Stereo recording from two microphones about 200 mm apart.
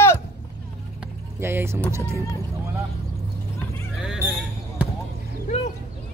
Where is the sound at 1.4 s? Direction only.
10° right (ahead or behind).